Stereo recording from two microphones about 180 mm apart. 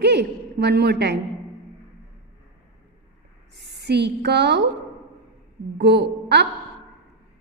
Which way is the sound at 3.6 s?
70° right (ahead or behind).